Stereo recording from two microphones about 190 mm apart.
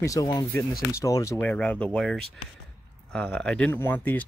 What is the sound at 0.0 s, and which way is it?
Speech, 20° left (ahead or behind).